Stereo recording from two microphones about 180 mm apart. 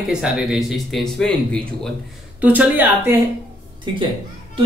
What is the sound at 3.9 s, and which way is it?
Speech, 25° right (ahead or behind).